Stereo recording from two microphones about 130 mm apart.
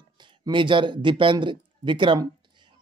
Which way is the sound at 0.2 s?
40° right (ahead or behind).